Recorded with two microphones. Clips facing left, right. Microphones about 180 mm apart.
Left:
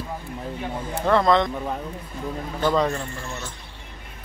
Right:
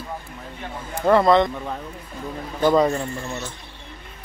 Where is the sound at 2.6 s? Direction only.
10° right (ahead or behind).